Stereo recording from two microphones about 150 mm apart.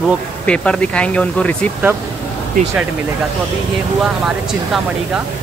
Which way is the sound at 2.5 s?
65° right (ahead or behind).